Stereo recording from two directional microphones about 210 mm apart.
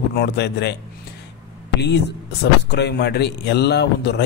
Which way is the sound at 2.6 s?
50° left (ahead or behind).